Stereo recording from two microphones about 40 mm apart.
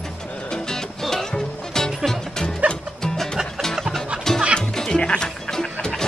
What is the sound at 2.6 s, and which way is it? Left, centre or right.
Music, right.